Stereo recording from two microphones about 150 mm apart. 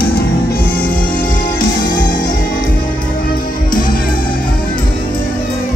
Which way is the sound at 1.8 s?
60° left (ahead or behind).